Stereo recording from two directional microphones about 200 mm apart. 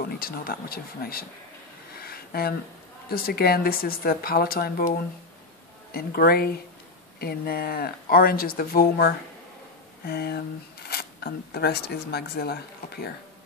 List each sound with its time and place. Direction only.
0.0 s speech: 45° left (ahead or behind)
2.0 s a sound: 50° left (ahead or behind)
3.1 s speech: 50° left (ahead or behind)
5.9 s speech: 50° left (ahead or behind)